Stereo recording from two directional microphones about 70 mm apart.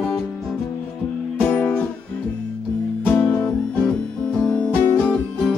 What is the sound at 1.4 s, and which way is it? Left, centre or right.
Music, centre.